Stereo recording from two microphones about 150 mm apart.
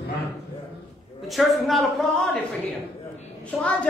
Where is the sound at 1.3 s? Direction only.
Centre (ahead or behind).